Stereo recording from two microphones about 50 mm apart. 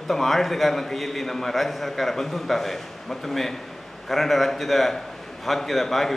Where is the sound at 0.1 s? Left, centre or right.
Centre.